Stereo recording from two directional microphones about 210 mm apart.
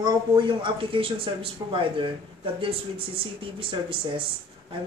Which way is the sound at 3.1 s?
25° right (ahead or behind).